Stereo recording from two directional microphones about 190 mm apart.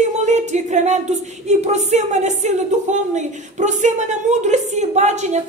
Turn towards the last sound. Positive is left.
turn(degrees=-35)  # may be behind; listen again after turning